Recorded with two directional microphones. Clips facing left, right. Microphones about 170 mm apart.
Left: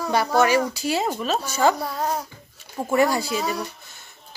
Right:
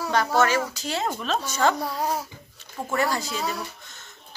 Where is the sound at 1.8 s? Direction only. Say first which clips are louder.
Left 1 dB; 10° right (ahead or behind).